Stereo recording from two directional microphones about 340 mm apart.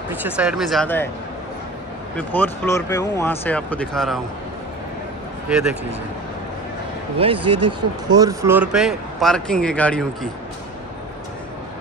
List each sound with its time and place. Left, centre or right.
0.2 s speech: centre
2.1 s speech: centre
5.5 s speech: centre
7.2 s speech: centre
7.5 s speech: right
8.2 s speech: centre